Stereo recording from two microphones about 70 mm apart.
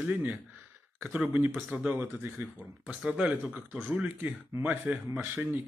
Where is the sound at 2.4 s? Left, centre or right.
Centre.